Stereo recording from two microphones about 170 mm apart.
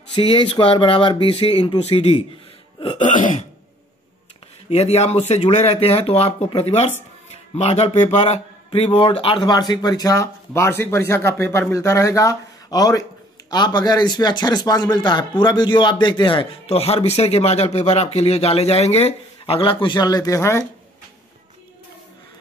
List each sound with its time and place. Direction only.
0.1 s speech: 30° left (ahead or behind)
2.8 s throat clearing: 35° left (ahead or behind)
3.2 s throat clearing: 50° left (ahead or behind)
4.6 s speech: 40° left (ahead or behind); by 20.6 s 15° left (ahead or behind)